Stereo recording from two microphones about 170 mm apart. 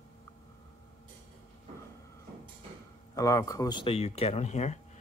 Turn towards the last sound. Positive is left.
turn(degrees=40)  # may be behind; listen again after turning